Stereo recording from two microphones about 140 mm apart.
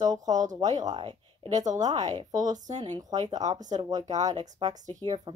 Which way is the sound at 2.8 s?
30° right (ahead or behind).